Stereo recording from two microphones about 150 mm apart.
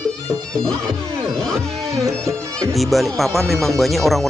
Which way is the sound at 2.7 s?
Centre (ahead or behind).